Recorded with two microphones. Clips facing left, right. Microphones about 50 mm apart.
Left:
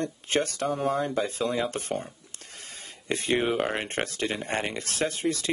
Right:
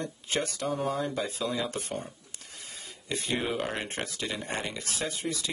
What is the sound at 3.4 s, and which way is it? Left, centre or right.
Speech, centre.